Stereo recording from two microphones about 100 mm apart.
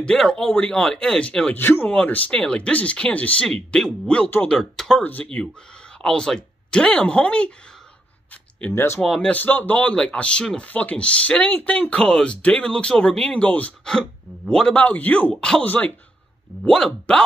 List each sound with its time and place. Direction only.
0.0 s speech: 10° left (ahead or behind)
1.6 s speech: 20° left (ahead or behind)
8.5 s speech: 20° left (ahead or behind)
9.0 s speech: centre (ahead or behind)
9.3 s speech: 15° left (ahead or behind)